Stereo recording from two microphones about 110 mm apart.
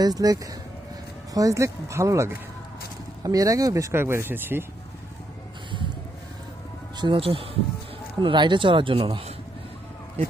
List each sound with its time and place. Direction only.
0.0 s speech: 35° right (ahead or behind); by 4.6 s 20° right (ahead or behind)
7.0 s speech: 50° right (ahead or behind)